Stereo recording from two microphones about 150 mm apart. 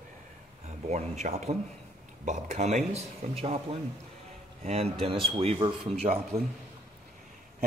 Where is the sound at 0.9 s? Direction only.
50° right (ahead or behind).